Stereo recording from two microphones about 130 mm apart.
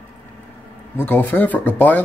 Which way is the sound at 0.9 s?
15° left (ahead or behind).